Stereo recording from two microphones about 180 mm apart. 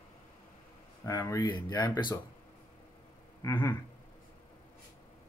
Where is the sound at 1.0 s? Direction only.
20° left (ahead or behind).